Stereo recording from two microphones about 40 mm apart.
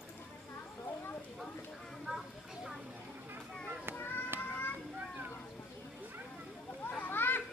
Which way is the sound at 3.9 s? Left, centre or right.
Left.